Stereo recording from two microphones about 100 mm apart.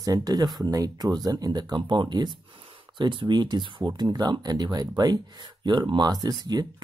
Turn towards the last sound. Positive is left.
turn(degrees=-40)  # may be behind; listen again after turning